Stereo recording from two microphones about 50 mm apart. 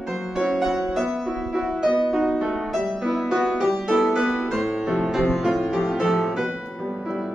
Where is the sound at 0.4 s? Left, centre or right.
Centre.